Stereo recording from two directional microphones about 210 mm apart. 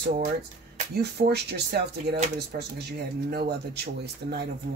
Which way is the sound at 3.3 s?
50° right (ahead or behind).